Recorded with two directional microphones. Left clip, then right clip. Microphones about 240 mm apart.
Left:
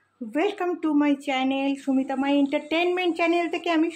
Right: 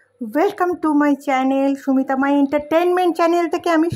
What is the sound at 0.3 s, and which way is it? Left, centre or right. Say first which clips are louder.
Speech: right 7 dB; right.